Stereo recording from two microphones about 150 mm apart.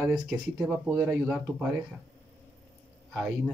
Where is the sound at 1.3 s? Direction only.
10° right (ahead or behind).